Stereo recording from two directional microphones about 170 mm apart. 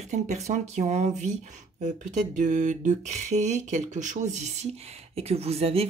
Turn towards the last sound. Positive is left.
turn(degrees=-35)  # may be behind; listen again after turning